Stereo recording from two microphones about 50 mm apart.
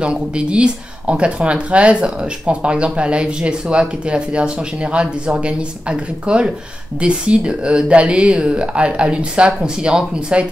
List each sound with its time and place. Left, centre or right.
0.0 s speech: right